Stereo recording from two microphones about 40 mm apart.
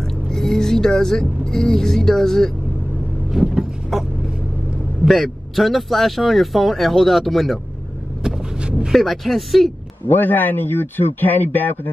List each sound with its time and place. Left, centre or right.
0.3 s speech: centre
3.9 s vehicle: centre
5.0 s a man's voice: centre
8.2 s vehicle: centre
8.9 s a man's voice: centre
10.0 s speech: left